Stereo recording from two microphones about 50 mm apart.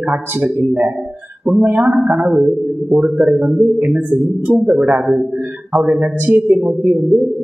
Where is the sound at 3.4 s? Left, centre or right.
Right.